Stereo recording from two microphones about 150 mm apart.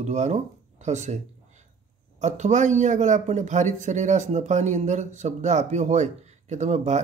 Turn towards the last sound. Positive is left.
turn(degrees=-50)  # may be behind; listen again after turning